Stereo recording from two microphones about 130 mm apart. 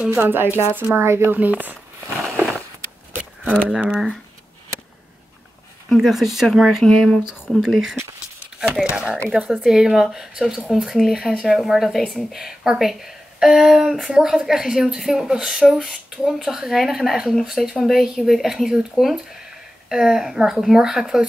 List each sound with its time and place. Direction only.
0.0 s speech: 15° right (ahead or behind)
3.6 s speech: 10° right (ahead or behind)
5.9 s speech: centre (ahead or behind)